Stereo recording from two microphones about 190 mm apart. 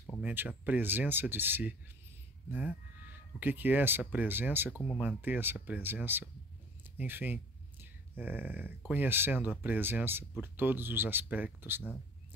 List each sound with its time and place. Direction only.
0.2 s speech: 10° right (ahead or behind)
3.3 s speech: 10° right (ahead or behind)